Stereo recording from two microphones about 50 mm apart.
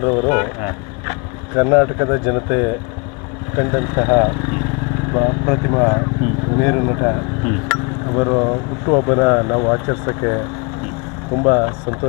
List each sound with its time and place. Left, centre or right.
0.0 s speech: centre